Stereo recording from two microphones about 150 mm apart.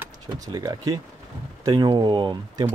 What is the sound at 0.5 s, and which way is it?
Speech, 25° right (ahead or behind).